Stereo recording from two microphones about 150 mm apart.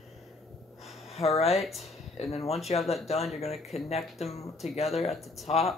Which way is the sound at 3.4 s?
Centre (ahead or behind).